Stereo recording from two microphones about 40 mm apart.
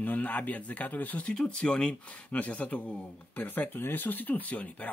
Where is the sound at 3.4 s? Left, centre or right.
Left.